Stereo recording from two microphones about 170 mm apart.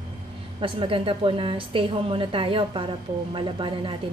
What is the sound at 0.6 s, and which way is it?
A woman's voice, 30° right (ahead or behind).